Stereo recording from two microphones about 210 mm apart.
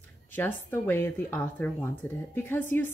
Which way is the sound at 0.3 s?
10° left (ahead or behind).